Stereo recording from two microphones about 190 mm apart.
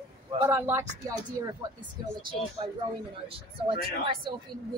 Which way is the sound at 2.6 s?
25° right (ahead or behind).